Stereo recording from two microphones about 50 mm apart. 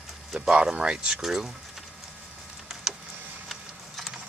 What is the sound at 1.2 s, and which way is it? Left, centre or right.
Speech, centre.